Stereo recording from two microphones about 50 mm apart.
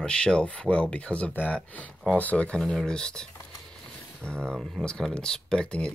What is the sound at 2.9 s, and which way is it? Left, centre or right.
Speech, centre.